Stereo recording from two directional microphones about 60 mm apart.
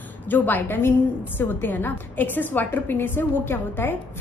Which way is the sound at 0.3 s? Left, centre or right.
Left.